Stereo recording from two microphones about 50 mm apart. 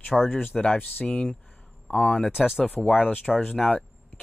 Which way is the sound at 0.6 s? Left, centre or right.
Left.